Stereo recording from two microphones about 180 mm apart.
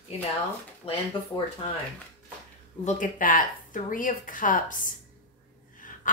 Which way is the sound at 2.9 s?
45° left (ahead or behind).